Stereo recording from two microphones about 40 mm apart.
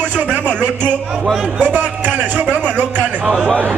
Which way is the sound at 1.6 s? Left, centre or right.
Right.